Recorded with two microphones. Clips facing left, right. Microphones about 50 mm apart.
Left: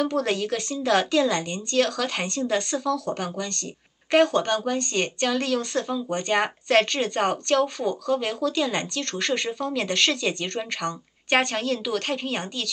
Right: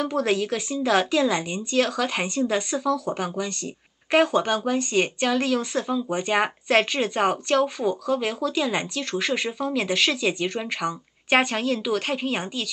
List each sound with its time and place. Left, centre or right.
0.0 s speech: centre